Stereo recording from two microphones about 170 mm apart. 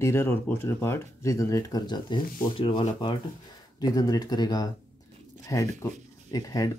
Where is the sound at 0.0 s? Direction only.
15° left (ahead or behind).